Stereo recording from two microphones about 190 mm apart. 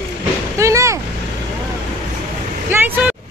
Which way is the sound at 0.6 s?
15° right (ahead or behind).